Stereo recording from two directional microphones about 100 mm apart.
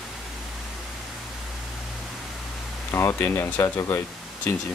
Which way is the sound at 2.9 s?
25° left (ahead or behind).